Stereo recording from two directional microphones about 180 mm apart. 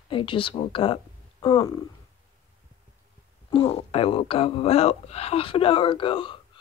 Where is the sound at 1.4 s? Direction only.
20° left (ahead or behind).